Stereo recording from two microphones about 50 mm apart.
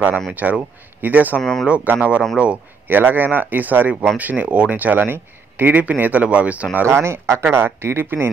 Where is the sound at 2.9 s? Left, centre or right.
Right.